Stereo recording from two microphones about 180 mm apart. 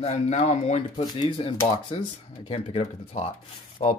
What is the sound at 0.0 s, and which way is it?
Speech, 40° left (ahead or behind).